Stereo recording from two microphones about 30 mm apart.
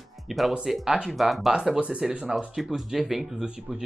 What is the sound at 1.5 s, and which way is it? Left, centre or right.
Speech, centre.